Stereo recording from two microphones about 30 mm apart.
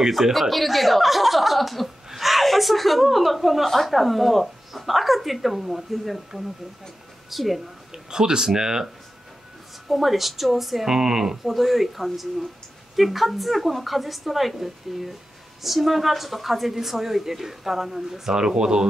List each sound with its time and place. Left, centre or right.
0.1 s speech: centre
7.9 s speech: right
9.8 s speech: centre
10.9 s a woman's voice: centre
11.5 s a woman's voice: centre
18.3 s speech: right